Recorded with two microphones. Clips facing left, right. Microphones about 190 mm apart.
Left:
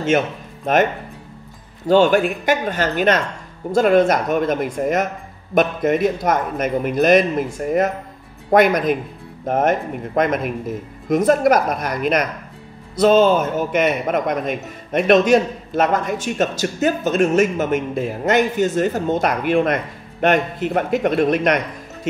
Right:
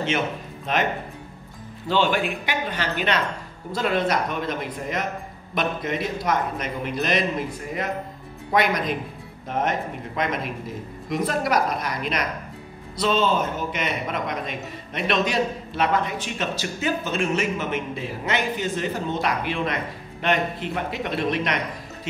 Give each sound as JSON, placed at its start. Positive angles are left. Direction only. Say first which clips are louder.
{"t": 0.7, "sound": "a man's voice", "louder": "left 8 dB", "side_deg": 45}
{"t": 1.9, "sound": "a man's voice", "louder": "left 8 dB", "side_deg": 45}